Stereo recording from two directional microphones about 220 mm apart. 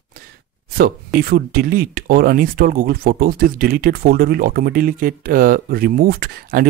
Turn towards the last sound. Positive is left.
turn(degrees=-45)  # may be behind; listen again after turning